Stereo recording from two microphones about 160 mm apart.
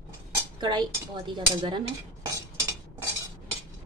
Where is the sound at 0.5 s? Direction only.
30° right (ahead or behind).